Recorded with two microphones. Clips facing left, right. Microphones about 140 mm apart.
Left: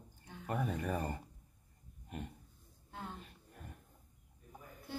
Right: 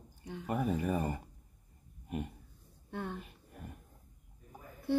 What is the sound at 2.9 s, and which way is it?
Speech, 60° right (ahead or behind).